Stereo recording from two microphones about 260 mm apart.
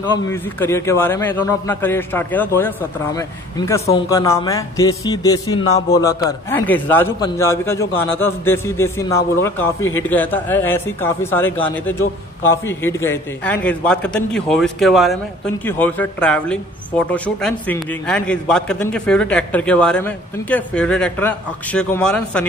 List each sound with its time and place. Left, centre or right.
0.1 s a man's voice: centre
9.8 s a man's voice: left
10.0 s a man's voice: centre